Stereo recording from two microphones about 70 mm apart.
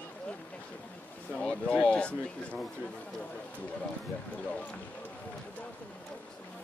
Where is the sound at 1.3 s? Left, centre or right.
Centre.